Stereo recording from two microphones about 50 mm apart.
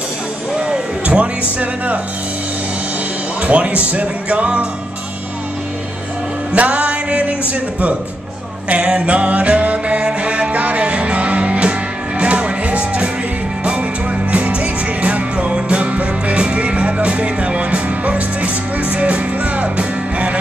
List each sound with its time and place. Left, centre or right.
0.6 s music: right
3.4 s speech: right
6.5 s music: right
14.3 s music: right